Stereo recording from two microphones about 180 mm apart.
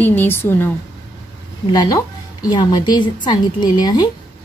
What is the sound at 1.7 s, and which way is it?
A woman's voice, 20° left (ahead or behind).